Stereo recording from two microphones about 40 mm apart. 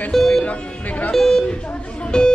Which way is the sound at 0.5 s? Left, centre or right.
Left.